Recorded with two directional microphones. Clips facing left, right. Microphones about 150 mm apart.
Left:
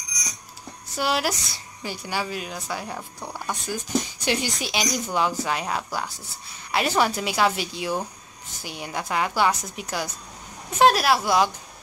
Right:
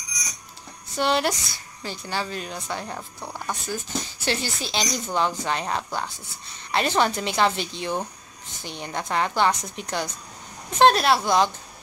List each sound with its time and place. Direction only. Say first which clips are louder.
0.9 s speech: right 2 dB; 5° left (ahead or behind)